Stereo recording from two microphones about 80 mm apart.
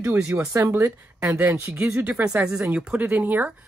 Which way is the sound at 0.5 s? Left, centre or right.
Right.